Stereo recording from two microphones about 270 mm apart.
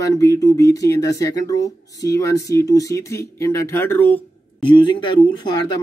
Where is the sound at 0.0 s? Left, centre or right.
Centre.